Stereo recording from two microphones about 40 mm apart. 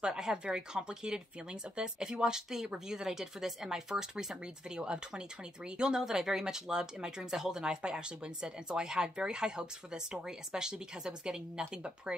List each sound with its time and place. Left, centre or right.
0.0 s speech: centre